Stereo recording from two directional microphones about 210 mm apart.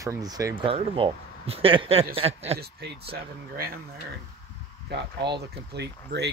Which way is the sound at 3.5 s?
45° right (ahead or behind).